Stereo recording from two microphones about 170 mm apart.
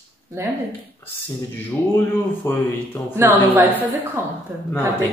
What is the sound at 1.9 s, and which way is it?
Speech, 15° left (ahead or behind).